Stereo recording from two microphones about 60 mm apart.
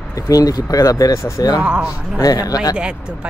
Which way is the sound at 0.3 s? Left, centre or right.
Left.